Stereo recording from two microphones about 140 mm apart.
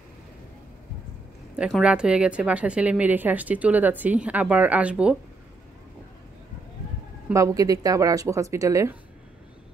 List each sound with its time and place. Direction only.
1.7 s speech: 5° right (ahead or behind)
7.3 s speech: 25° right (ahead or behind)